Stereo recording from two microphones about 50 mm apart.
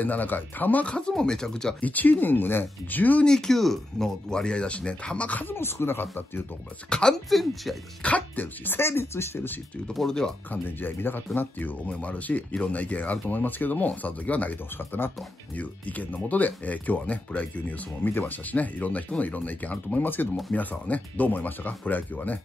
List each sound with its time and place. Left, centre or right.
0.0 s speech: left
0.8 s speech: left
1.8 s speech: left
3.3 s speech: centre
4.3 s speech: centre
5.5 s speech: left
6.9 s speech: centre
7.2 s speech: centre
8.0 s speech: left
8.7 s speech: left
9.9 s speech: centre
10.5 s speech: left
15.0 s speech: left
15.5 s speech: left